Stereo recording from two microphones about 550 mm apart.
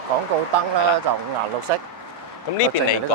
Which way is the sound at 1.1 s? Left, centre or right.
Right.